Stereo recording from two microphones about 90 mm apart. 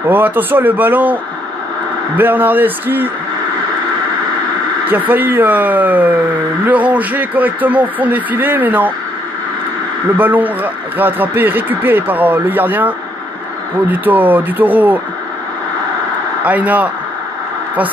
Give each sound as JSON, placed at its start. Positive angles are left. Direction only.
{"t": 0.0, "sound": "speech", "side_deg": -20}
{"t": 2.1, "sound": "speech", "side_deg": -20}
{"t": 4.8, "sound": "speech", "side_deg": -20}
{"t": 10.1, "sound": "speech", "side_deg": -20}
{"t": 16.4, "sound": "speech", "side_deg": -15}